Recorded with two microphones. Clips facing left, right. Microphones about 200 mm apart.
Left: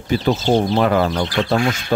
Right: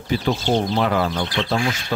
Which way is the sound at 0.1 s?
50° left (ahead or behind).